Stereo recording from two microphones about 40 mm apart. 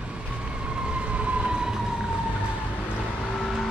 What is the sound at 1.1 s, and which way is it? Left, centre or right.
Siren, right.